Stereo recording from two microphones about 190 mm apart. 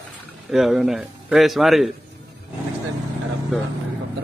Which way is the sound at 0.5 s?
Centre (ahead or behind).